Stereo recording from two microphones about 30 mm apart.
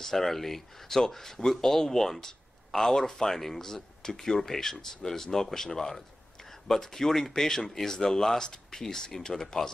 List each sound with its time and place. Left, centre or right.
0.0 s speech: centre